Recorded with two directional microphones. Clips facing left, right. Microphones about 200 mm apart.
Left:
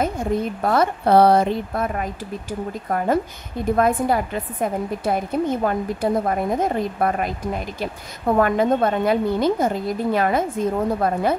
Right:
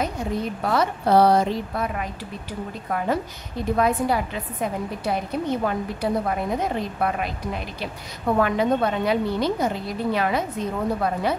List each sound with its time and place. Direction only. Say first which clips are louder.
0.0 s a woman's voice: left 4 dB; 50° left (ahead or behind)
3.7 s a woman's voice: left 2 dB; 50° left (ahead or behind)